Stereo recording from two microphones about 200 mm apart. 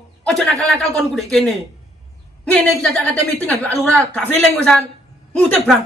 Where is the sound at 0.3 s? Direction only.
Centre (ahead or behind).